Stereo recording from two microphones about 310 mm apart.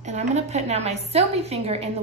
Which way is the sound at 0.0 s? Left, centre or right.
Right.